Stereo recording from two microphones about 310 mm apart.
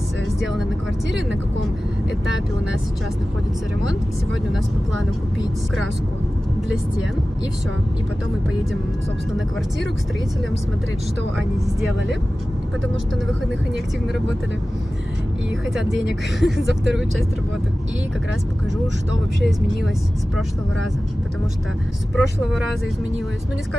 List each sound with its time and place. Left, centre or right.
11.3 s speech: centre
15.7 s speech: centre
22.1 s speech: centre